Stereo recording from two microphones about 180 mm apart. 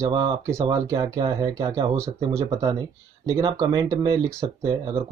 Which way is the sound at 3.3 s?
20° right (ahead or behind).